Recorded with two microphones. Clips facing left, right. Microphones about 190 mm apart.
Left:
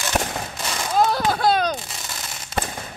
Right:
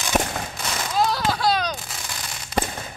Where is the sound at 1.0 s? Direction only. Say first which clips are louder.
Left 3 dB; 50° left (ahead or behind).